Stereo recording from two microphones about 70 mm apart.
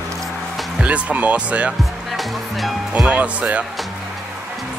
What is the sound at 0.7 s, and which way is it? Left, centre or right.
Speech, centre.